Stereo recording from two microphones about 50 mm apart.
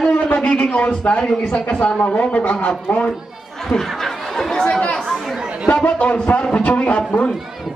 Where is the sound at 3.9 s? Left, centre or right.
Centre.